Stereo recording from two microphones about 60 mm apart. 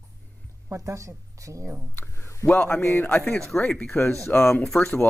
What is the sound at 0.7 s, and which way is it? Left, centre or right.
Speech, right.